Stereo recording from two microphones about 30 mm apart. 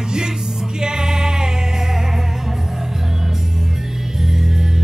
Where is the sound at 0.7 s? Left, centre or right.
Right.